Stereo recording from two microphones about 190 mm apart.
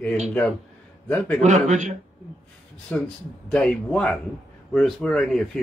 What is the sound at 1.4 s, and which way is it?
Speech, 40° right (ahead or behind).